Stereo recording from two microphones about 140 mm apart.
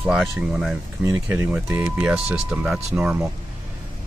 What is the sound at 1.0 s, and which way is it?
Speech, 20° right (ahead or behind).